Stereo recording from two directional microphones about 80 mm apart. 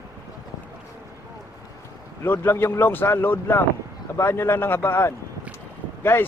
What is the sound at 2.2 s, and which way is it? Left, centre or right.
Speech, left.